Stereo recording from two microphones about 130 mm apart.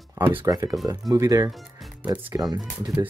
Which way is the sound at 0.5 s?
25° right (ahead or behind).